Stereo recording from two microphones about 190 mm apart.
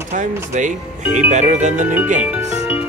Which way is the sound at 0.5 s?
40° right (ahead or behind).